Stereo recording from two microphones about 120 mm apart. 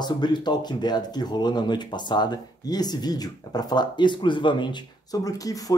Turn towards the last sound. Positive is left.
turn(degrees=30)  # may be behind; listen again after turning